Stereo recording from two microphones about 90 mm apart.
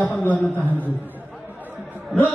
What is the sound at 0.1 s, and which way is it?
Speech, 20° left (ahead or behind).